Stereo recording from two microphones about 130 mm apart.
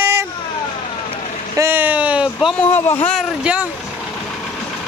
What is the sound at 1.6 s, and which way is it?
Speech, 15° right (ahead or behind).